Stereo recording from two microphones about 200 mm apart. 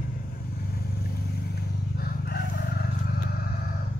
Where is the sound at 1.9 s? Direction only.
50° left (ahead or behind).